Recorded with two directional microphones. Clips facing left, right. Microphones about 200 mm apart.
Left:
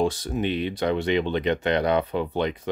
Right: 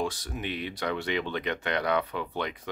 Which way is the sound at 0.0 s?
25° left (ahead or behind).